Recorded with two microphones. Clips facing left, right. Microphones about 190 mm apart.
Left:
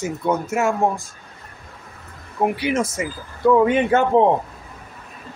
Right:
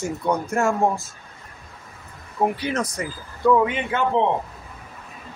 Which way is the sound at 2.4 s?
10° left (ahead or behind).